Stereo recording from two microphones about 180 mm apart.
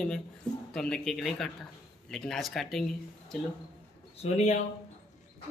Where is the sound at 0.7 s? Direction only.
5° left (ahead or behind).